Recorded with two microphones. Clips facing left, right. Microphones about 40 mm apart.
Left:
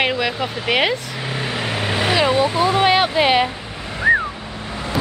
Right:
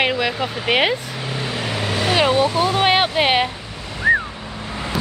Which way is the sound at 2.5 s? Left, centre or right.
Centre.